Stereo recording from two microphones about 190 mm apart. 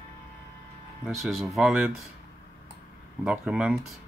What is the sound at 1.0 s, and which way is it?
Speech, centre (ahead or behind).